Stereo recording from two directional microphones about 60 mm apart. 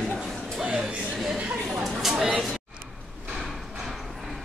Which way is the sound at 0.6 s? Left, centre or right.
Centre.